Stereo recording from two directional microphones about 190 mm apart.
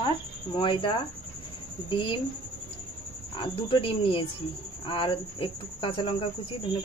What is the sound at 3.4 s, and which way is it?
Speech, 25° left (ahead or behind).